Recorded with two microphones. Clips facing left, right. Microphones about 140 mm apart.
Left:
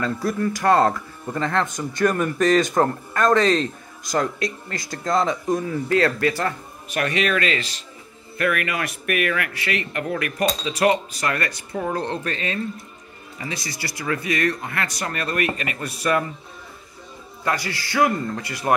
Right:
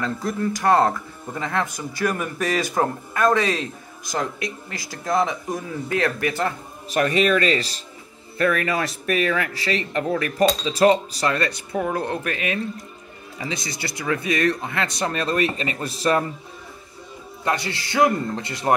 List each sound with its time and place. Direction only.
0.0 s speech: 20° right (ahead or behind)
6.9 s speech: 35° right (ahead or behind)
9.0 s speech: 25° right (ahead or behind)
11.7 s speech: 10° right (ahead or behind); by 16.3 s 30° right (ahead or behind)
17.5 s speech: 25° right (ahead or behind)